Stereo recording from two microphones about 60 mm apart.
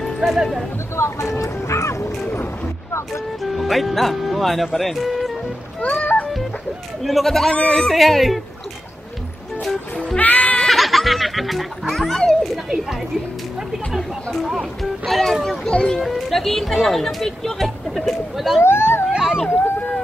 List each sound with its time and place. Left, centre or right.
0.0 s speech: centre
0.9 s speech: left
3.4 s speech: centre
5.8 s speech: left
7.0 s speech: centre
10.1 s speech: left
10.6 s music: centre
11.9 s speech: centre
14.8 s a child's voice: centre
16.0 s speech: centre
18.6 s speech: left
19.1 s a sound: centre
19.5 s run: left